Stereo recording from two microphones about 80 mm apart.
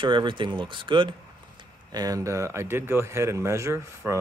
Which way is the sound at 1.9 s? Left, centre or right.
Right.